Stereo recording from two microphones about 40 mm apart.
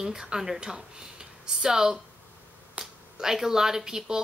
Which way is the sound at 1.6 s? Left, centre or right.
Centre.